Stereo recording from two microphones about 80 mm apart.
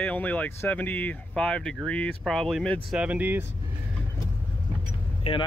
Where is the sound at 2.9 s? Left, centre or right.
Centre.